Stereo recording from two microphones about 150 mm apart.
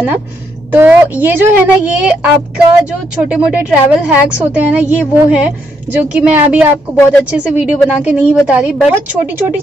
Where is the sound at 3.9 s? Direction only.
10° right (ahead or behind).